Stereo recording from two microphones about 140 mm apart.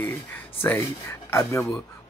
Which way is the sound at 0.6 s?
15° left (ahead or behind).